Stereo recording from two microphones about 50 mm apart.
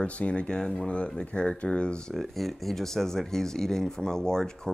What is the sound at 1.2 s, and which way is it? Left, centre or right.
Speech, left.